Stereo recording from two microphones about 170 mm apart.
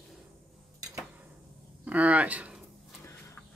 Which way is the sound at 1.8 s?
10° right (ahead or behind).